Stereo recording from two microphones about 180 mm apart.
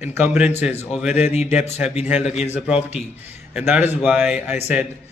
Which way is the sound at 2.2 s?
35° left (ahead or behind).